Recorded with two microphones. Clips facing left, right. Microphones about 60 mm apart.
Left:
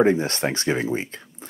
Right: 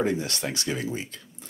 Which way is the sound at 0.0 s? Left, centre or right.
Left.